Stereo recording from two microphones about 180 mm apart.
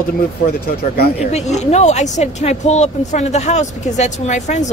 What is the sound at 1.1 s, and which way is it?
A woman's voice, 40° left (ahead or behind).